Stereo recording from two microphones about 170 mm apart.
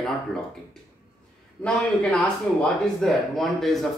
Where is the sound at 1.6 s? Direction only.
5° left (ahead or behind).